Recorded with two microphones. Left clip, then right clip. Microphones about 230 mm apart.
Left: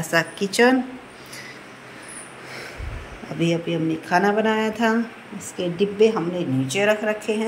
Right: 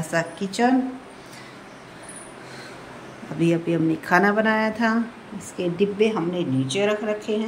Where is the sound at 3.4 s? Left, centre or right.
Centre.